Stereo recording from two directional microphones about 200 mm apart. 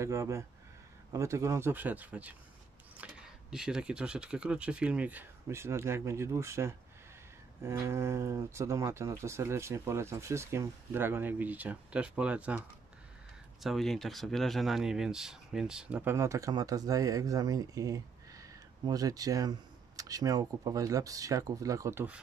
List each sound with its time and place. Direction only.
0.0 s speech: 15° right (ahead or behind)